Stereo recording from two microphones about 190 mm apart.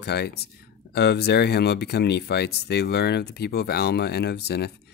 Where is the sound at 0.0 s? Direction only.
60° left (ahead or behind).